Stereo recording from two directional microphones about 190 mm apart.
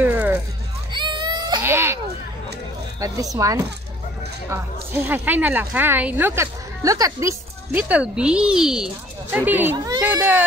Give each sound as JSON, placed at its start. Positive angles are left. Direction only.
{"t": 0.0, "sound": "a sound", "side_deg": -10}
{"t": 0.9, "sound": "baby cry", "side_deg": -25}
{"t": 1.6, "sound": "baby cry", "side_deg": -15}
{"t": 3.0, "sound": "speech", "side_deg": -15}